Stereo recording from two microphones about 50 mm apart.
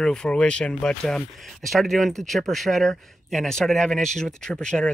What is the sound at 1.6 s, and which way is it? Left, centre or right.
Speech, centre.